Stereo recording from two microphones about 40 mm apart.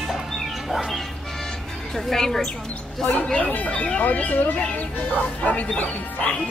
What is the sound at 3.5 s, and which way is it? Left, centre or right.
Speech, left.